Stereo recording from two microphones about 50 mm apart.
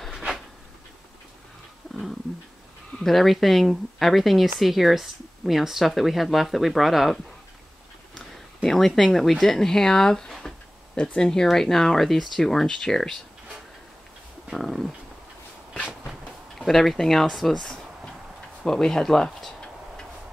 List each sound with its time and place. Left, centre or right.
3.0 s speech: centre
8.6 s speech: centre
14.5 s speech: centre
15.9 s a sound: centre
18.6 s tick-tock: centre